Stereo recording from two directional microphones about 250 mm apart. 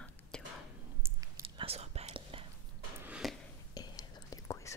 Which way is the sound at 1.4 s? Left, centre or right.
Right.